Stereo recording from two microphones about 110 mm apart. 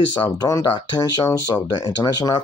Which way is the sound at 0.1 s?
45° left (ahead or behind).